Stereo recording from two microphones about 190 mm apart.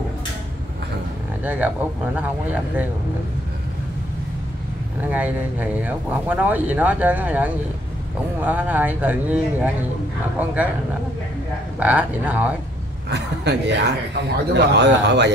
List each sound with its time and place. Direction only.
1.4 s speech: 10° right (ahead or behind)
5.0 s speech: 10° right (ahead or behind)
11.8 s speech: 5° right (ahead or behind)
13.1 s a man's voice: 65° right (ahead or behind)